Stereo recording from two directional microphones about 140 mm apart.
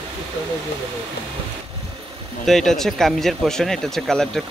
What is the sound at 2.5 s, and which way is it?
Speech, 5° left (ahead or behind).